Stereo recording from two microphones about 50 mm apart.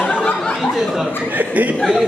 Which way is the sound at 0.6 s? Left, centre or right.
Centre.